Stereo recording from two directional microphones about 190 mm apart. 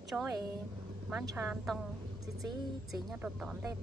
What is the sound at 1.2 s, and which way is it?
Speech, 10° right (ahead or behind).